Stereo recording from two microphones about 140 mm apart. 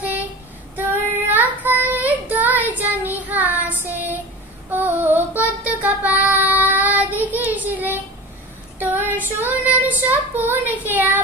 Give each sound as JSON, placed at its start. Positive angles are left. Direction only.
{"t": 1.3, "sound": "child singing", "side_deg": -10}
{"t": 7.5, "sound": "a sound", "side_deg": -10}
{"t": 8.7, "sound": "child singing", "side_deg": -15}